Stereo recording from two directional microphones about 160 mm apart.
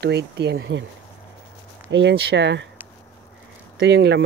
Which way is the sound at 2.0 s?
90° right.